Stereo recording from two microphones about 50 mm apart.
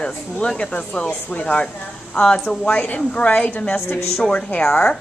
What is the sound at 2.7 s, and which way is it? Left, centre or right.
A woman's voice, left.